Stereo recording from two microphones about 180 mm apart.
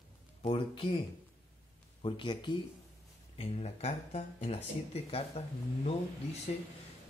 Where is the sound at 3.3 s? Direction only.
35° left (ahead or behind).